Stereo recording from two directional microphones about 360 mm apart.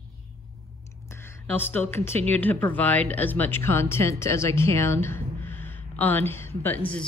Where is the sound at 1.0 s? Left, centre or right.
Centre.